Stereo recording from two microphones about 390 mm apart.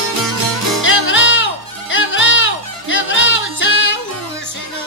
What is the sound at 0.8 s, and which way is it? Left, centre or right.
Music, left.